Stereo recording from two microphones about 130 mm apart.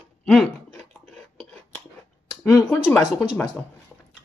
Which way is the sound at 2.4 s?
20° left (ahead or behind).